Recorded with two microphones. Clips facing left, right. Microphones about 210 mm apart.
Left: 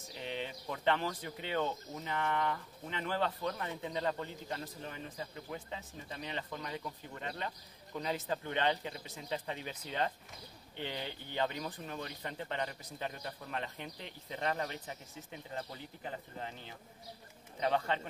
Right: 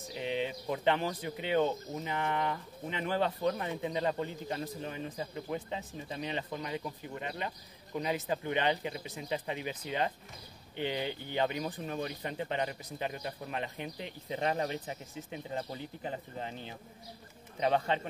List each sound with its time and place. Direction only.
0.2 s speech: 15° right (ahead or behind)